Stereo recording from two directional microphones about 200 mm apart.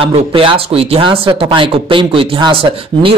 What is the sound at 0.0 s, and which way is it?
Speech, 25° right (ahead or behind).